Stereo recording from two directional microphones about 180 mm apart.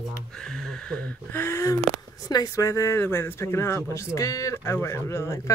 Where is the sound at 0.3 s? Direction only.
5° left (ahead or behind).